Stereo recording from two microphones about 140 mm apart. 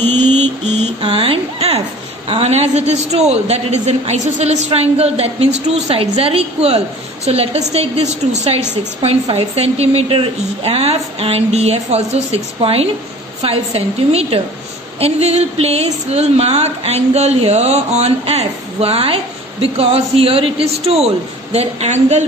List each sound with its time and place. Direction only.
0.0 s mantra: 15° left (ahead or behind)
1.0 s speech: 40° right (ahead or behind)